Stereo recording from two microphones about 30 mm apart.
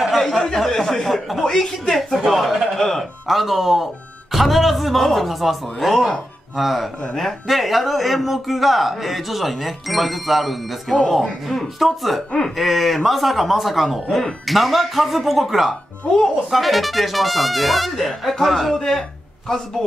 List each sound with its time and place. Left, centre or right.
0.1 s a sound: centre
0.6 s speech: centre
2.0 s a sound: centre
2.2 s a man's voice: centre
2.8 s speech: centre
3.3 s a man's voice: centre
13.9 s a man's voice: centre